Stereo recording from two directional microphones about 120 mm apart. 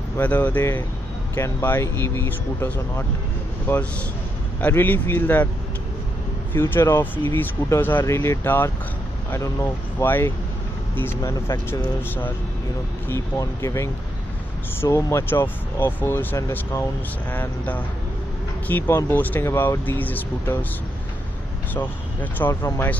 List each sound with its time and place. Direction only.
0.2 s speech: 15° left (ahead or behind)
6.5 s speech: 20° left (ahead or behind)
13.1 s speech: 25° left (ahead or behind)
21.7 s speech: 15° left (ahead or behind)